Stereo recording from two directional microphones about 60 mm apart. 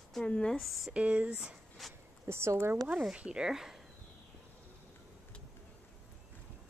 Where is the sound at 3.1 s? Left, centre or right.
Centre.